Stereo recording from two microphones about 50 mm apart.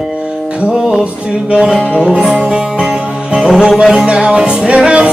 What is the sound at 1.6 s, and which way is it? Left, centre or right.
Music, centre.